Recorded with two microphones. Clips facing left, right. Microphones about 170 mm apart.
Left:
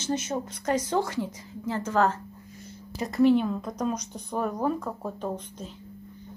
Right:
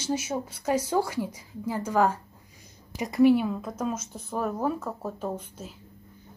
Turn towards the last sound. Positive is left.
turn(degrees=-5)  # may be behind; listen again after turning